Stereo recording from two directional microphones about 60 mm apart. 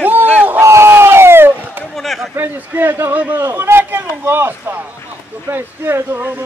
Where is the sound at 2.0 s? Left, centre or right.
Centre.